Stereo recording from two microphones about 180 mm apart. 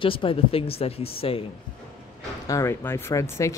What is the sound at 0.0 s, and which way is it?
Speech, 30° left (ahead or behind).